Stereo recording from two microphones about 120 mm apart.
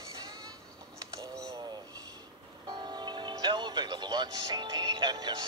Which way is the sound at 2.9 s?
40° right (ahead or behind).